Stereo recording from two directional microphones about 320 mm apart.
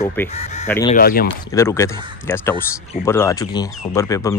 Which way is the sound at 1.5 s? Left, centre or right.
Centre.